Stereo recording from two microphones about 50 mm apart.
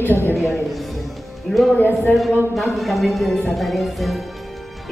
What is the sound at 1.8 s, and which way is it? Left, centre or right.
Speech, left.